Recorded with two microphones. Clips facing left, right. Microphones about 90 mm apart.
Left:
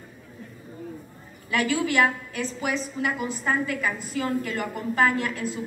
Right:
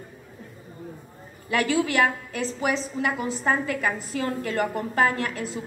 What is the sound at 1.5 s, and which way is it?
A woman's voice, 35° right (ahead or behind).